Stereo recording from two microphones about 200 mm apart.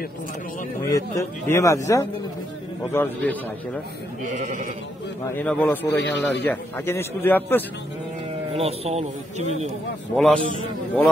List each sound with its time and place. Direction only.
0.8 s a man's voice: 15° left (ahead or behind)
5.3 s a man's voice: 5° left (ahead or behind)
8.5 s speech: 30° right (ahead or behind)
10.1 s a man's voice: 5° left (ahead or behind)